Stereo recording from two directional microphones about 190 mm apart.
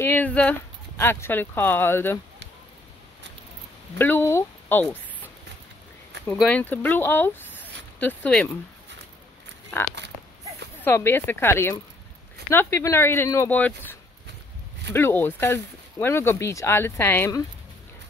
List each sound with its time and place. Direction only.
0.0 s speech: 10° left (ahead or behind)
4.0 s speech: 10° left (ahead or behind)
10.8 s speech: 10° left (ahead or behind)